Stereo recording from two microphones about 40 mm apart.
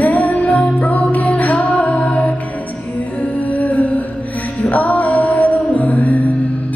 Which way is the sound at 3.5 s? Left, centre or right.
Left.